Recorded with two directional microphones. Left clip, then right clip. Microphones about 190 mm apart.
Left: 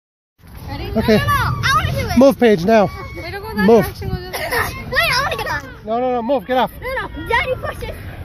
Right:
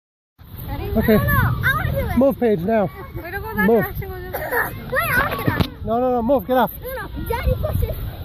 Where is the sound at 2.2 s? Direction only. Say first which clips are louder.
Left 7 dB; 25° left (ahead or behind).